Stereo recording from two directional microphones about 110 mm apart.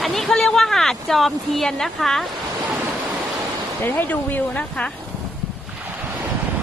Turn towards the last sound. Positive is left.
turn(degrees=10)  # may be behind; listen again after turning